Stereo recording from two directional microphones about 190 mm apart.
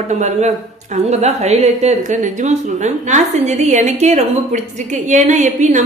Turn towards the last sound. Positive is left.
turn(degrees=-40)  # may be behind; listen again after turning